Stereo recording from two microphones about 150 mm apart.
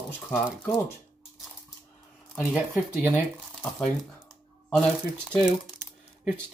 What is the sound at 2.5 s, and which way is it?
Speech, 10° right (ahead or behind).